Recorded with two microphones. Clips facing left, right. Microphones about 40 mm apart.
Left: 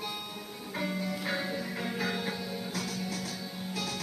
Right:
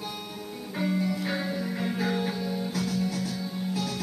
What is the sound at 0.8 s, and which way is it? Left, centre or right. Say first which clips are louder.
Music: right 6 dB; centre.